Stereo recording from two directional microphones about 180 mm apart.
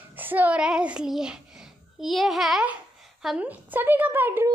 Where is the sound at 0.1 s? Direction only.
10° right (ahead or behind).